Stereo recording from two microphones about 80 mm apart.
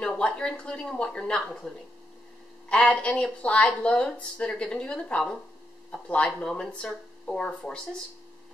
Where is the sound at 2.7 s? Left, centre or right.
Centre.